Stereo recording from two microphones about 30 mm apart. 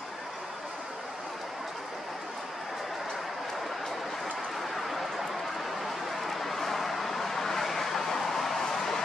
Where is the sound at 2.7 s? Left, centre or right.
Centre.